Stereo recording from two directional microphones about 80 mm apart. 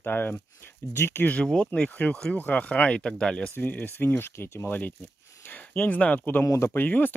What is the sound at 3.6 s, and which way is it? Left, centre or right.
Speech, left.